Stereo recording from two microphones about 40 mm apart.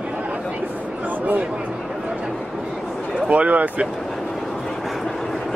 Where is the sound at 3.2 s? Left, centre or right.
Right.